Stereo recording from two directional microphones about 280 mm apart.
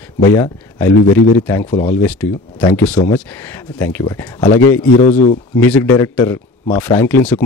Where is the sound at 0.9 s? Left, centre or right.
Left.